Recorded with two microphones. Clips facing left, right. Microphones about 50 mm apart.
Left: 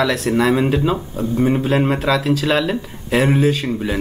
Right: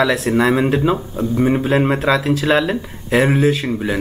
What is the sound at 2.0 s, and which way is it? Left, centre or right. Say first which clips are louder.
Speech: right 1 dB; right.